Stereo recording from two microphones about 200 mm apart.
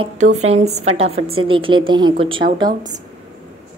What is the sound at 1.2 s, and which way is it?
Speech, 90° right.